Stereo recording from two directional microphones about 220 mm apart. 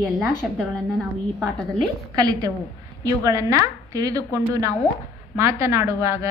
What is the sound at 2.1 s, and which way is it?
A woman's voice, 15° right (ahead or behind).